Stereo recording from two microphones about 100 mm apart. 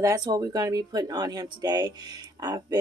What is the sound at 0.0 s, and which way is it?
Speech, 40° right (ahead or behind).